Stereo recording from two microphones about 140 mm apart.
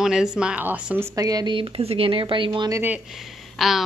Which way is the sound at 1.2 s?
25° right (ahead or behind).